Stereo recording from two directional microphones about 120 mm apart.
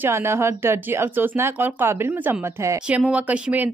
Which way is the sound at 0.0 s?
20° right (ahead or behind).